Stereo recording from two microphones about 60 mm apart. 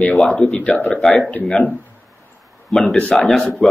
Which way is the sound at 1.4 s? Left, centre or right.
Left.